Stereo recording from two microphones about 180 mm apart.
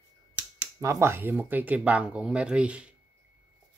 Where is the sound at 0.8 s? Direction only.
15° right (ahead or behind).